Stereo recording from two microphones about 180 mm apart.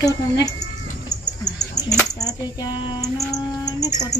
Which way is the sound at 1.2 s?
20° left (ahead or behind).